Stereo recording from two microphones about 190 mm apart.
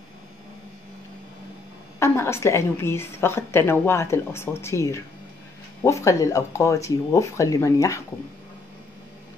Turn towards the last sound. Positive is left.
turn(degrees=15)  # may be behind; listen again after turning